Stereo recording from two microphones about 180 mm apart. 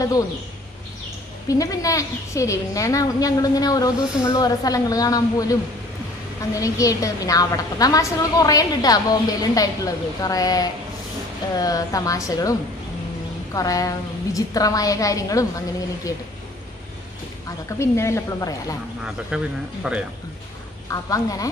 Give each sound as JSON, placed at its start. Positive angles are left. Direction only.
{"t": 1.5, "sound": "a woman's voice", "side_deg": 20}
{"t": 17.7, "sound": "a woman's voice", "side_deg": 15}
{"t": 19.0, "sound": "speech", "side_deg": -5}
{"t": 20.9, "sound": "a woman's voice", "side_deg": 20}